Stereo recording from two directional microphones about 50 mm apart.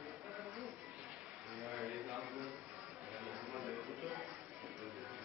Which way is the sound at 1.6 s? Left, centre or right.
Centre.